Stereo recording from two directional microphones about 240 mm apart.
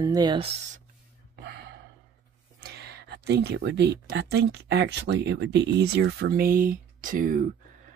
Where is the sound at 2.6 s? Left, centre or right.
Right.